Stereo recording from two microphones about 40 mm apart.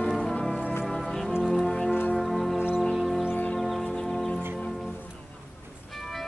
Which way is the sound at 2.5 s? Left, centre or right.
Right.